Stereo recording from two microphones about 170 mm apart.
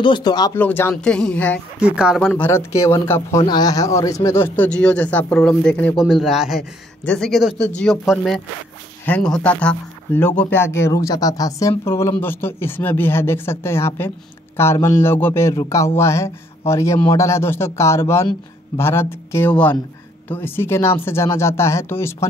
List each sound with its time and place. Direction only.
0.0 s speech: 25° left (ahead or behind)
0.6 s a man's voice: 10° left (ahead or behind)
1.8 s speech: 5° right (ahead or behind)
2.3 s a man's voice: 15° left (ahead or behind)